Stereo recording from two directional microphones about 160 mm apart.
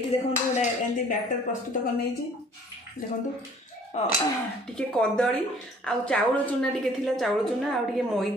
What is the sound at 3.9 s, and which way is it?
Speech, 40° left (ahead or behind).